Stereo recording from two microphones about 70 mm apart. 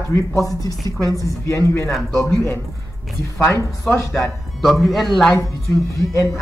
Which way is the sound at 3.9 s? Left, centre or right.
Left.